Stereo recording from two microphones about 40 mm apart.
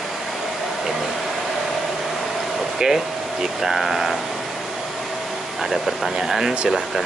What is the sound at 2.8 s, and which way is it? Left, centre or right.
Speech, centre.